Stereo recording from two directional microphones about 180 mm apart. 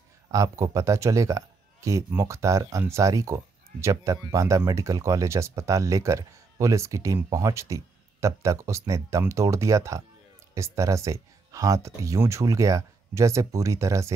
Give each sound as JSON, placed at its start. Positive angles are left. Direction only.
{"t": 0.3, "sound": "speech", "side_deg": -20}